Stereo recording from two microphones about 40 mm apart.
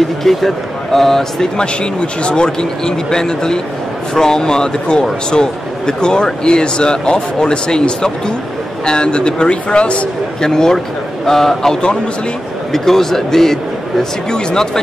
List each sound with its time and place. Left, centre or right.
0.2 s speech: centre
1.6 s speech: left
10.4 s speech: centre